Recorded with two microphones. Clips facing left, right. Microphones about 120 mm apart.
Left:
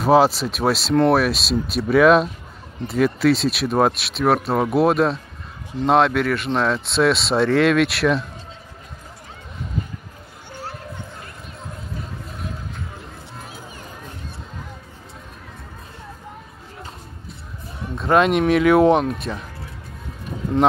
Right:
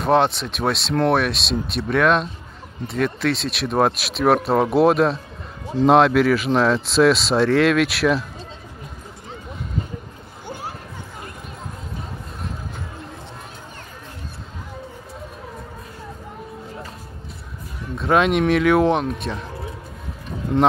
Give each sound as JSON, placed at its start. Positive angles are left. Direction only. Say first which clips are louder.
{"t": 0.0, "sound": "speech", "louder": "left 3 dB", "side_deg": 5}
{"t": 17.9, "sound": "speech", "louder": "left 1 dB", "side_deg": 0}
{"t": 20.5, "sound": "speech", "louder": "even", "side_deg": 0}